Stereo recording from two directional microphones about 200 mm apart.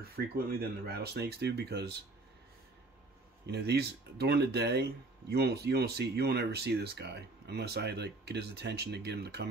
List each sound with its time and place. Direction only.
0.0 s speech: 50° right (ahead or behind)
3.4 s speech: 55° right (ahead or behind)